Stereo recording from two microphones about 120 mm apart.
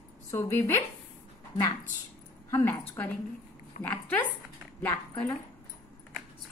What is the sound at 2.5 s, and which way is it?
Speech, 20° left (ahead or behind).